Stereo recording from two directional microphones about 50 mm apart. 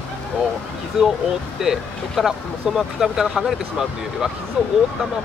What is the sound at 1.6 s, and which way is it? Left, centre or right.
Speech, centre.